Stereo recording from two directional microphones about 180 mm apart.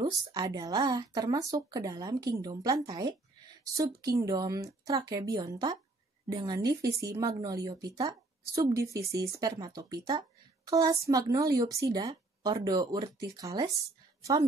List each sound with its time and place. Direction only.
0.0 s a woman's voice: 20° right (ahead or behind)